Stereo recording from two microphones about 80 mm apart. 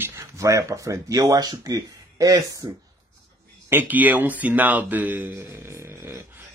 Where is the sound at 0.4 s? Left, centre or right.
Right.